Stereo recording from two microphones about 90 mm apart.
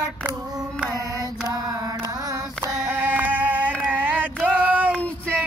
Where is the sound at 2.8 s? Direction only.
20° right (ahead or behind).